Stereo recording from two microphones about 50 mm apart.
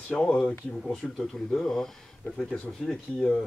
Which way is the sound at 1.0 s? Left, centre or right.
Centre.